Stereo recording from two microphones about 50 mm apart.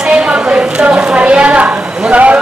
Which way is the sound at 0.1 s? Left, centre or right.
Centre.